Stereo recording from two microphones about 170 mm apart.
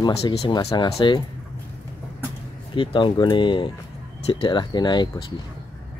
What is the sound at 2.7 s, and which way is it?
Speech, 30° left (ahead or behind).